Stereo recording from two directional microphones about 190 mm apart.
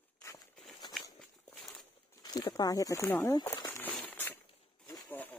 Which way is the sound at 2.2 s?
20° left (ahead or behind).